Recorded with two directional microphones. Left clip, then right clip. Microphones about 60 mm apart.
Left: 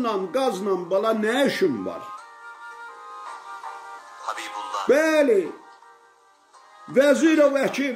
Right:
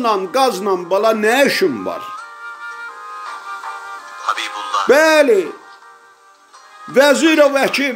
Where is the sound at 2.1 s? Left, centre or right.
Centre.